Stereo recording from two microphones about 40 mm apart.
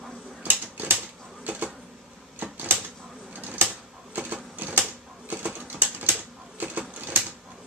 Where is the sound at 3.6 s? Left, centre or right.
Right.